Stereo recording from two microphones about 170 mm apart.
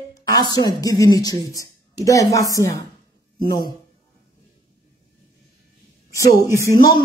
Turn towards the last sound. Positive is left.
turn(degrees=25)  # may be behind; listen again after turning